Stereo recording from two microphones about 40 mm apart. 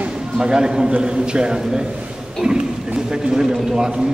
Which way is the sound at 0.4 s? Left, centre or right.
Centre.